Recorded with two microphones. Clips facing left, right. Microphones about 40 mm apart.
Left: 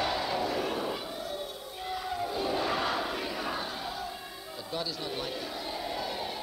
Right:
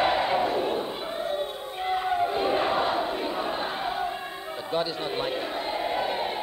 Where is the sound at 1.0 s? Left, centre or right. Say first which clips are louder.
Right 8 dB; right.